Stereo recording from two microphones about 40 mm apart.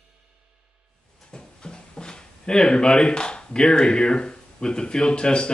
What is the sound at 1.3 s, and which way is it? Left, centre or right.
Speech, left.